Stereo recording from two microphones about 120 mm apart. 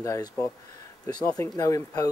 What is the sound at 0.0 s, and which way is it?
Speech, 25° left (ahead or behind).